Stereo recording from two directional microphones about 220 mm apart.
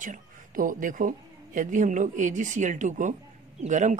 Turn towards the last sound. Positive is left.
turn(degrees=-35)  # may be behind; listen again after turning